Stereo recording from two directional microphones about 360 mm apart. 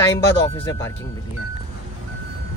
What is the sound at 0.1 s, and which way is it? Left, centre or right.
Speech, centre.